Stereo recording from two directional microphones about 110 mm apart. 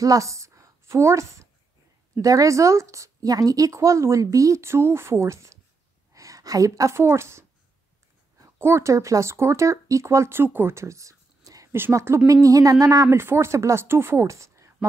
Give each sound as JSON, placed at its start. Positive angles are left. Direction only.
{"t": 0.0, "sound": "a woman's voice", "side_deg": -30}